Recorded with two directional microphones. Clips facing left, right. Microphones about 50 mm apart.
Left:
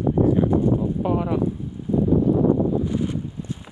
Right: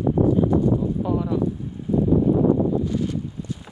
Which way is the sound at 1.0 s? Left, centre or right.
Left.